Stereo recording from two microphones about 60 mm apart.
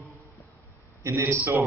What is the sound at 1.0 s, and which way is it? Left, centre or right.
Speech, right.